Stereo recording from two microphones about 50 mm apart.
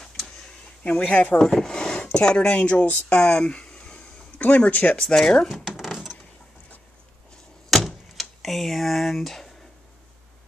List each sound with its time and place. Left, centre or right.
0.8 s speech: left
1.5 s a sound: centre
2.1 s speech: centre
4.4 s speech: left
5.0 s speech: centre
5.5 s a sound: centre
7.7 s door: centre